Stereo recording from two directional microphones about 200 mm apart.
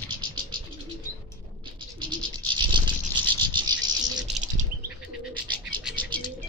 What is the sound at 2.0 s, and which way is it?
Bird, 25° right (ahead or behind).